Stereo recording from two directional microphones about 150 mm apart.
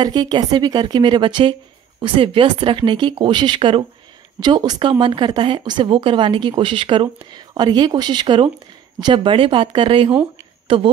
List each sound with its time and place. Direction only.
0.0 s speech: 30° right (ahead or behind)